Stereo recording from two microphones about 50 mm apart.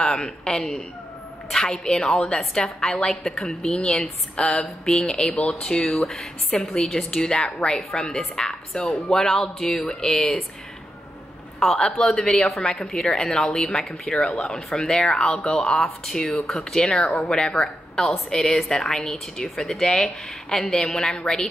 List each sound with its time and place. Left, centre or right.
0.0 s a woman's voice: centre
3.8 s a woman's voice: centre
11.6 s a woman's voice: centre
12.4 s a woman's voice: centre
16.3 s speech: centre
16.7 s a woman's voice: centre
17.1 s speech: centre
17.4 s a woman's voice: centre